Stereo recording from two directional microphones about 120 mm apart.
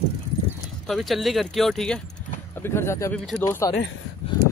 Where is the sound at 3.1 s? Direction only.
10° left (ahead or behind).